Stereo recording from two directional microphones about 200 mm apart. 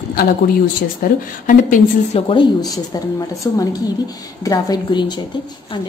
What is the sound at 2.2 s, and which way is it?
Speech, 25° left (ahead or behind).